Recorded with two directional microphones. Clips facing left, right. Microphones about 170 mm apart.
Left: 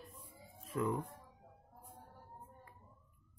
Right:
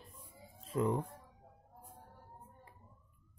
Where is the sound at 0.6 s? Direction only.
25° right (ahead or behind).